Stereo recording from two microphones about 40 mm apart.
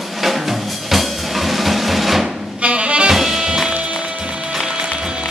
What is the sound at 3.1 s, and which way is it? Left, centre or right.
Music, centre.